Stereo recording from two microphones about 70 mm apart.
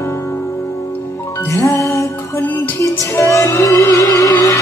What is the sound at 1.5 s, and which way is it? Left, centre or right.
Music, left.